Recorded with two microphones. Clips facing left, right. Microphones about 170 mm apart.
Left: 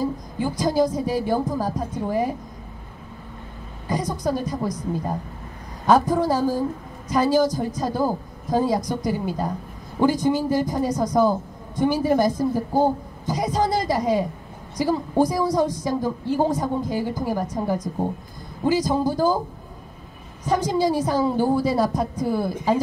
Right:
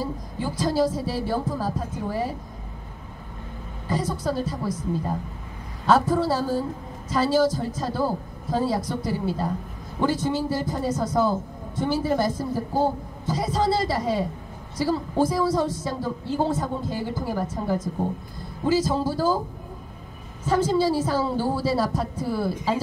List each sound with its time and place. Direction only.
0.4 s a man's voice: 15° left (ahead or behind)
3.9 s a man's voice: 15° left (ahead or behind)
20.4 s a man's voice: 15° left (ahead or behind)